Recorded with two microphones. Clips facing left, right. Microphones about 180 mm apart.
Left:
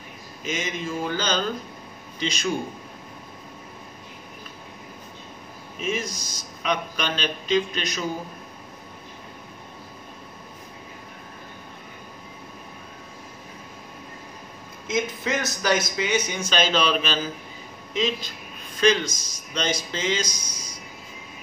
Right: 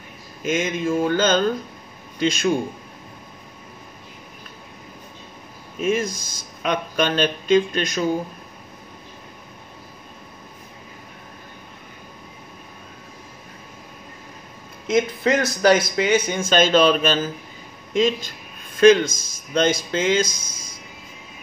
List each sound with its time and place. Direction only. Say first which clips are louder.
0.4 s speech: right 7 dB; 50° right (ahead or behind)
5.8 s speech: right 7 dB; 50° right (ahead or behind)
14.9 s a man's voice: right 7 dB; 60° right (ahead or behind)